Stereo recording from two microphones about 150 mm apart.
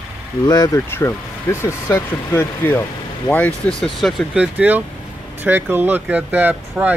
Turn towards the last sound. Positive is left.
turn(degrees=0)  # may be behind; listen again after turning